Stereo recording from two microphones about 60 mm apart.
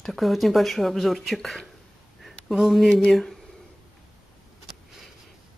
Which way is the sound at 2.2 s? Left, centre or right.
Centre.